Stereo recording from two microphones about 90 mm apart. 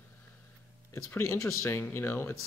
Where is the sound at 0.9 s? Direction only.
30° left (ahead or behind).